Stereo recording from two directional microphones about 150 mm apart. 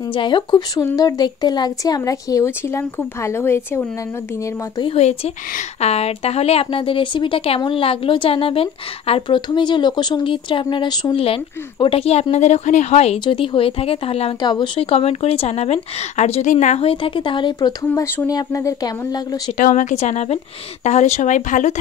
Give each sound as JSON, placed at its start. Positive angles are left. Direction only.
{"t": 0.1, "sound": "a woman's voice", "side_deg": 35}
{"t": 4.9, "sound": "a woman's voice", "side_deg": 45}
{"t": 13.2, "sound": "a woman's voice", "side_deg": 35}
{"t": 16.9, "sound": "speech", "side_deg": 35}
{"t": 19.5, "sound": "a woman's voice", "side_deg": 60}